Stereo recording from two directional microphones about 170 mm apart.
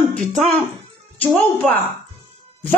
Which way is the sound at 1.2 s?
10° left (ahead or behind).